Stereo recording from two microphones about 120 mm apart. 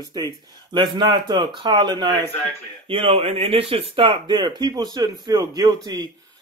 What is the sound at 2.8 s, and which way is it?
Speech, 50° right (ahead or behind).